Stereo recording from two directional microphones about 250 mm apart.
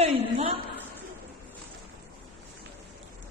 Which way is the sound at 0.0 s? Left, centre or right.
Right.